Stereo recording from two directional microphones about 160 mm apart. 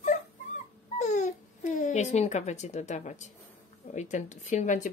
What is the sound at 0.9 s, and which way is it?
Baby cry, 45° left (ahead or behind).